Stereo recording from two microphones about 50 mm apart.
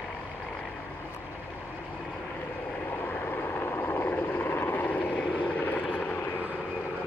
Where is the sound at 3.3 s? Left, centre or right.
Left.